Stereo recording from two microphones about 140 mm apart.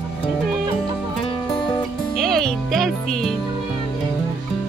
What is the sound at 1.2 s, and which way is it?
Music, 30° left (ahead or behind).